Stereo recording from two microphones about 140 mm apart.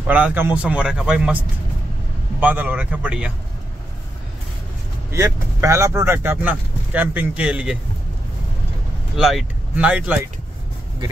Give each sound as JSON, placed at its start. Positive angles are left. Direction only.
{"t": 0.0, "sound": "speech", "side_deg": -10}
{"t": 2.4, "sound": "speech", "side_deg": -10}
{"t": 5.1, "sound": "speech", "side_deg": -20}
{"t": 9.1, "sound": "speech", "side_deg": 0}